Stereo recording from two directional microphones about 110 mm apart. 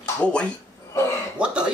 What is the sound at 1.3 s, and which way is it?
Speech, 10° right (ahead or behind).